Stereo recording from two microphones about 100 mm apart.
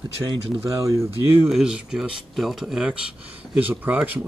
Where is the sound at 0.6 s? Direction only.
30° right (ahead or behind).